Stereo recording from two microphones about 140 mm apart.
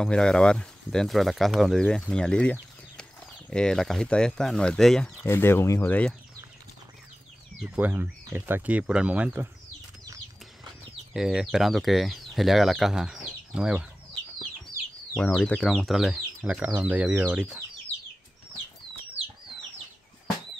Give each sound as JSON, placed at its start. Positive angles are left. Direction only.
{"t": 0.0, "sound": "speech", "side_deg": 5}
{"t": 5.2, "sound": "speech", "side_deg": 15}
{"t": 7.5, "sound": "speech", "side_deg": -10}
{"t": 11.1, "sound": "speech", "side_deg": -5}
{"t": 15.1, "sound": "speech", "side_deg": 10}